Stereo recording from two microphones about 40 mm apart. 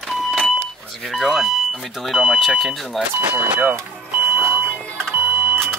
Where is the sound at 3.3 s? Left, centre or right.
Right.